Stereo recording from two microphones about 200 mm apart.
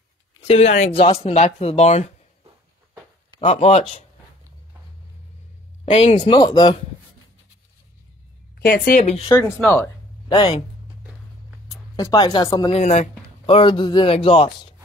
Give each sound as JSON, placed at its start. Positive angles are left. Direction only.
{"t": 0.4, "sound": "speech", "side_deg": 35}
{"t": 3.3, "sound": "speech", "side_deg": 30}
{"t": 5.9, "sound": "a man's voice", "side_deg": 30}
{"t": 8.5, "sound": "speech", "side_deg": 45}
{"t": 9.6, "sound": "speech", "side_deg": 5}
{"t": 10.2, "sound": "speech", "side_deg": 20}
{"t": 11.7, "sound": "speech", "side_deg": 20}
{"t": 12.7, "sound": "a man's voice", "side_deg": 35}